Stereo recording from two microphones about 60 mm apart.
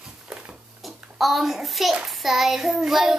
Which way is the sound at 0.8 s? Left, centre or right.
Centre.